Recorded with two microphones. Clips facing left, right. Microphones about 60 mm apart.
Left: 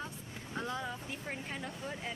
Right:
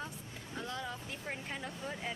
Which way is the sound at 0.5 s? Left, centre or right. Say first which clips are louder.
Left 3 dB; centre.